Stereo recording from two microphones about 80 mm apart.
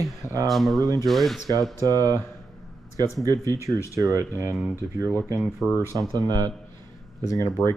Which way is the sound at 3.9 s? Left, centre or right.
Right.